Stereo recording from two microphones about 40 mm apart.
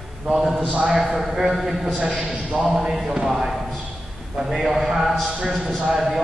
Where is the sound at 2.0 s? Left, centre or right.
Right.